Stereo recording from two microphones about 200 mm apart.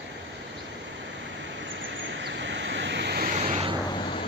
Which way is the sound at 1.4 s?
65° right (ahead or behind).